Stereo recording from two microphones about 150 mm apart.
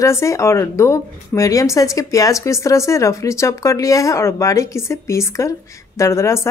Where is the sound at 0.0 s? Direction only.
20° left (ahead or behind).